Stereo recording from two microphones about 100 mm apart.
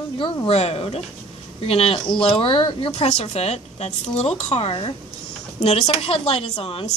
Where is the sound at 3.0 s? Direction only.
90° left; by 4.9 s 75° left (ahead or behind).